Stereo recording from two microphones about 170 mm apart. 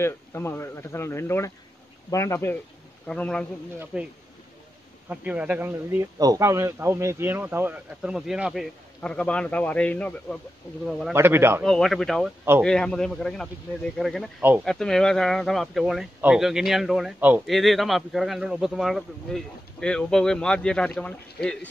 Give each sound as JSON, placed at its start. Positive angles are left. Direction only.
{"t": 0.0, "sound": "speech", "side_deg": 15}
{"t": 3.8, "sound": "speech", "side_deg": -5}
{"t": 5.1, "sound": "speech", "side_deg": -10}
{"t": 11.1, "sound": "speech", "side_deg": -15}
{"t": 11.6, "sound": "speech", "side_deg": 0}